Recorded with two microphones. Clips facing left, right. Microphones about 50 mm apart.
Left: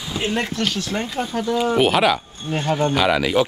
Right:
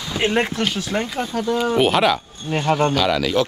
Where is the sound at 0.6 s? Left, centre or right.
Centre.